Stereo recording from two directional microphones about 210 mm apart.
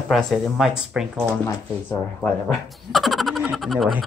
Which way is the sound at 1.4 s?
10° left (ahead or behind).